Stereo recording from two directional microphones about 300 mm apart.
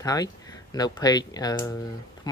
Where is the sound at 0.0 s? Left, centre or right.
Centre.